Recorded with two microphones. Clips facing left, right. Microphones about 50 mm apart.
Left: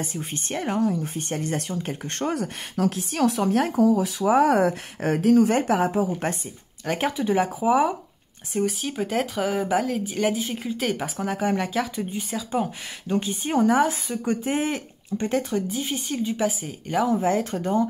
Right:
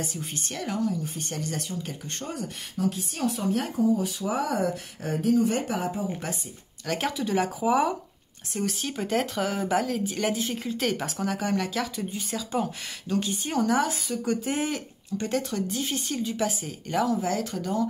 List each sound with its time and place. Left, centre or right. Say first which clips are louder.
0.0 s speech: left 3 dB; left
2.1 s speech: left 9 dB; left
4.2 s speech: left 8 dB; left
6.9 s speech: left 4 dB; centre
17.1 s speech: left 5 dB; left